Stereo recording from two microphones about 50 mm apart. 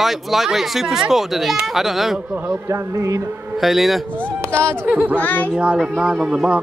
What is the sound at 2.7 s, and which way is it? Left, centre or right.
Speech, right.